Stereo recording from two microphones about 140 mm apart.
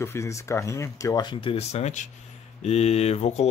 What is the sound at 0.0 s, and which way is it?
Speech, 20° left (ahead or behind).